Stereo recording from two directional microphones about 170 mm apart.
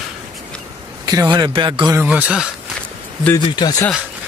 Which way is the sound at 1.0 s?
25° right (ahead or behind).